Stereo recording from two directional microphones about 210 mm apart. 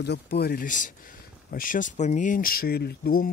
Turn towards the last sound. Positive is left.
turn(degrees=45)  # may be behind; listen again after turning